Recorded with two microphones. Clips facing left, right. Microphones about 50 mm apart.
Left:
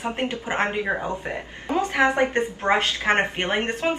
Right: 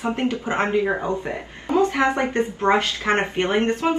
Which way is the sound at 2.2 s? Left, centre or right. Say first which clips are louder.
Even; left.